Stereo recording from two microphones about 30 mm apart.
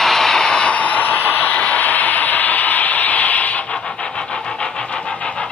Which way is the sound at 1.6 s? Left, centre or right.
Left.